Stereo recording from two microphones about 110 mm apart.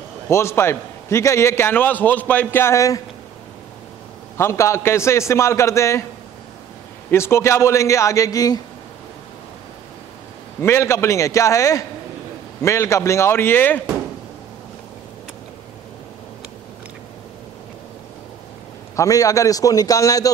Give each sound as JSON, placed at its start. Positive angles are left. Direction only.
{"t": 0.3, "sound": "a man's voice", "side_deg": 25}
{"t": 4.4, "sound": "a man's voice", "side_deg": 25}
{"t": 7.1, "sound": "a man's voice", "side_deg": 25}
{"t": 10.6, "sound": "a man's voice", "side_deg": 25}
{"t": 18.9, "sound": "a man's voice", "side_deg": 30}